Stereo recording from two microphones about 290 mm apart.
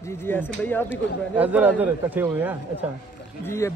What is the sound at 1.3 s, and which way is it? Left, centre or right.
A man's voice, centre.